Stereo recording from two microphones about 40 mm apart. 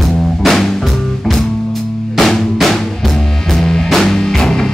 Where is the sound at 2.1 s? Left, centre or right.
Centre.